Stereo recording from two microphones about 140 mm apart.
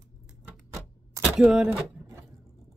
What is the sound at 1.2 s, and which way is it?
Speech, 5° right (ahead or behind).